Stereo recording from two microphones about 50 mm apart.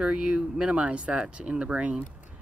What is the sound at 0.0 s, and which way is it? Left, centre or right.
Speech, right.